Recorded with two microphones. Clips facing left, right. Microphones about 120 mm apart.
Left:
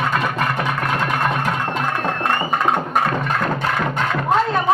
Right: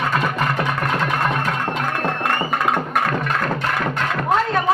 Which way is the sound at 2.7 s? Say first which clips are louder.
Left 2 dB; 25° left (ahead or behind).